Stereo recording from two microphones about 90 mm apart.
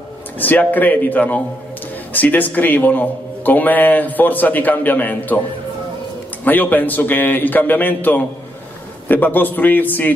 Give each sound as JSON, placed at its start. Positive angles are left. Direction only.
{"t": 0.4, "sound": "a man's voice", "side_deg": 20}
{"t": 6.4, "sound": "a man's voice", "side_deg": 20}